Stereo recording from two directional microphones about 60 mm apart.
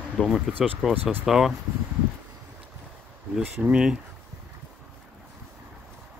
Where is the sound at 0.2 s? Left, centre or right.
Centre.